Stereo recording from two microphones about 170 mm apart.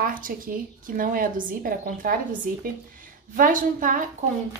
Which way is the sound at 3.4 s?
50° right (ahead or behind).